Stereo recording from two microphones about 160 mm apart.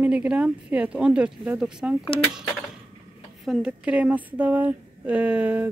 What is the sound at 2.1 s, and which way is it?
Speech, 35° left (ahead or behind).